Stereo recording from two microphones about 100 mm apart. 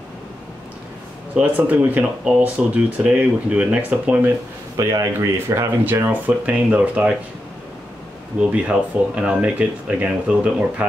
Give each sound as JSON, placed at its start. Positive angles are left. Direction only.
{"t": 1.3, "sound": "speech", "side_deg": -15}
{"t": 4.7, "sound": "speech", "side_deg": -30}
{"t": 8.4, "sound": "speech", "side_deg": -10}